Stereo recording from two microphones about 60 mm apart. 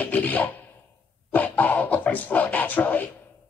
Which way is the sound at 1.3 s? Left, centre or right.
Left.